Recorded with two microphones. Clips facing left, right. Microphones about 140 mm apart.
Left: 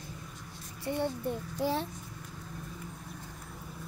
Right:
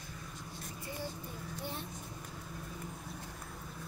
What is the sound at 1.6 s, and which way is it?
Speech, 90° left.